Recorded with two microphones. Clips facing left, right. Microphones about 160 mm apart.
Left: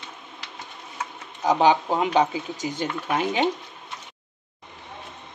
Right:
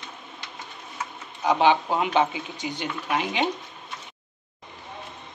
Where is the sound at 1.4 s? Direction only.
40° left (ahead or behind).